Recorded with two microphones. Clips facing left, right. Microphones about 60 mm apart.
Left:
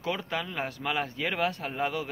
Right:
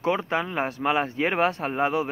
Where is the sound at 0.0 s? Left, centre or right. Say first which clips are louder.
Right 7 dB; right.